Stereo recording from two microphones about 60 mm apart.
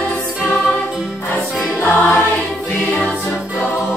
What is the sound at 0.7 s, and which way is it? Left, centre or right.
Music, centre.